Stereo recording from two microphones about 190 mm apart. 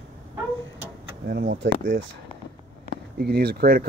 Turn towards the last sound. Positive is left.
turn(degrees=-55)  # may be behind; listen again after turning